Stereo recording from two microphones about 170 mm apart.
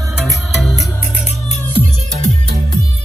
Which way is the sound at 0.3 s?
Centre (ahead or behind).